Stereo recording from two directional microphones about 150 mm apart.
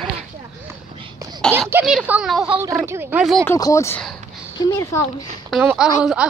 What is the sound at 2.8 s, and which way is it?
Speech, 15° right (ahead or behind).